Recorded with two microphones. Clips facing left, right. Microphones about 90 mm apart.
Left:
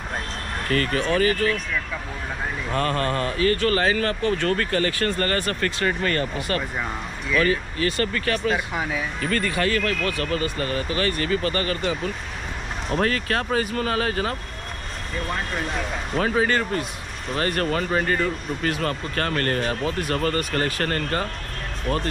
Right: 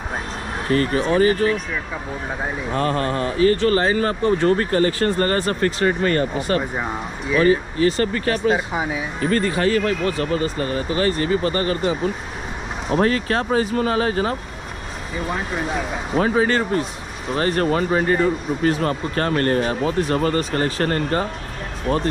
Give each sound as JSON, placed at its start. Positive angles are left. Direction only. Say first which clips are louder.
{"t": 0.7, "sound": "speech", "louder": "right 4 dB", "side_deg": -25}
{"t": 2.7, "sound": "speech", "louder": "right 2 dB", "side_deg": -30}
{"t": 8.7, "sound": "speech", "louder": "right 3 dB", "side_deg": -15}
{"t": 9.2, "sound": "speech", "louder": "right 6 dB", "side_deg": -25}
{"t": 13.0, "sound": "speech", "louder": "right 4 dB", "side_deg": -30}
{"t": 15.1, "sound": "speech", "louder": "right 3 dB", "side_deg": -5}
{"t": 16.2, "sound": "speech", "louder": "right 3 dB", "side_deg": -30}